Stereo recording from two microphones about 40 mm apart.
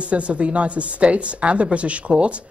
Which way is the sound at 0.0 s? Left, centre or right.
Right.